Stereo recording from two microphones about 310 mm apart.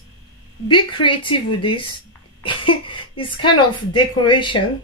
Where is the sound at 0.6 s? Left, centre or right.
Centre.